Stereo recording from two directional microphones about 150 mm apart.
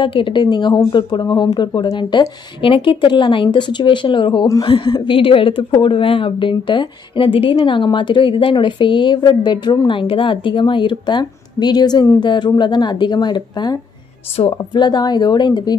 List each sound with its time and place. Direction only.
0.0 s a woman's voice: 35° left (ahead or behind)